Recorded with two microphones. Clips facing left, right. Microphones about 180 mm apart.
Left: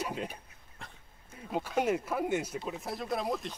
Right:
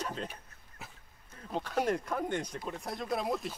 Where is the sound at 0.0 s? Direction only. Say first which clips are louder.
Left 2 dB; 10° left (ahead or behind).